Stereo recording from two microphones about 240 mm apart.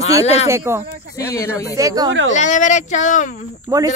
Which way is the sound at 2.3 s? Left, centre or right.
Left.